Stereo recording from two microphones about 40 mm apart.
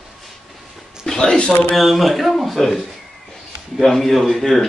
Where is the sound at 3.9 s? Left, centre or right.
Centre.